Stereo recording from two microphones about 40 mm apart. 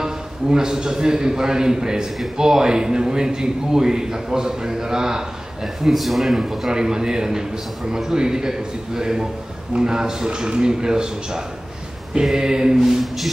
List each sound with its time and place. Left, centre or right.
0.0 s a man's voice: centre
5.9 s a man's voice: centre
6.7 s a man's voice: centre